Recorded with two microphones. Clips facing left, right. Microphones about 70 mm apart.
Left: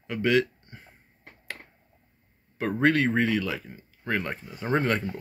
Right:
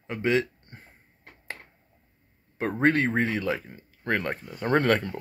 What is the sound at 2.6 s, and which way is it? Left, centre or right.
Speech, right.